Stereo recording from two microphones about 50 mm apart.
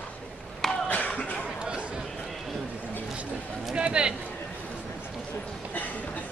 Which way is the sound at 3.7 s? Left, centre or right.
Right.